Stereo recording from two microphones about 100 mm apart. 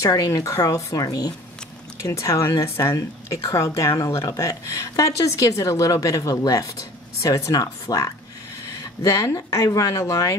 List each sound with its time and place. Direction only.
0.0 s a woman's voice: 35° left (ahead or behind)